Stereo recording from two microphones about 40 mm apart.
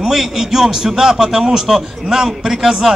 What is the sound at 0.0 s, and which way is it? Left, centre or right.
A man's voice, centre.